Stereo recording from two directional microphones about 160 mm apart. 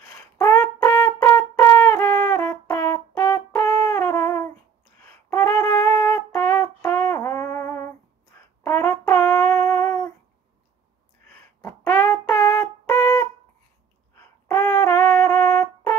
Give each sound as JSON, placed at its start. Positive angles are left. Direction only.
{"t": 0.0, "sound": "brass instrument", "side_deg": 15}
{"t": 5.3, "sound": "wind instrument", "side_deg": 15}
{"t": 8.6, "sound": "brass instrument", "side_deg": 15}
{"t": 11.6, "sound": "a sound", "side_deg": 10}
{"t": 14.5, "sound": "music", "side_deg": 15}